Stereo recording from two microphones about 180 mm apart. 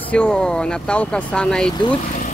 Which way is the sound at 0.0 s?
5° left (ahead or behind).